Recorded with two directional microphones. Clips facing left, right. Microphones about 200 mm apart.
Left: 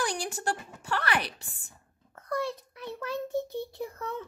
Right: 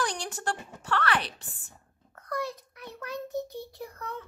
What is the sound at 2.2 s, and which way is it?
Child singing, 25° left (ahead or behind).